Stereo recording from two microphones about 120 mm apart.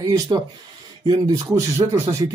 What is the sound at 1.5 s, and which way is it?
Speech, 25° right (ahead or behind).